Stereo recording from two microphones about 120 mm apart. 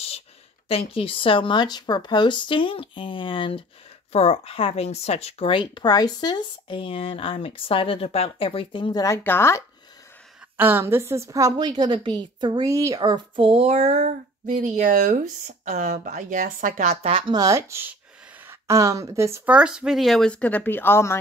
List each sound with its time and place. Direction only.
0.7 s speech: 50° left (ahead or behind)
4.1 s speech: 55° left (ahead or behind)
5.5 s speech: 40° left (ahead or behind)
9.0 s speech: 20° left (ahead or behind)
10.6 s a woman's voice: 20° right (ahead or behind); by 12.6 s 40° right (ahead or behind)
12.6 s a woman's voice: 25° right (ahead or behind)
13.5 s speech: 60° right (ahead or behind)
17.3 s a woman's voice: 30° right (ahead or behind)
19.4 s speech: 10° right (ahead or behind); by 21.2 s 20° left (ahead or behind)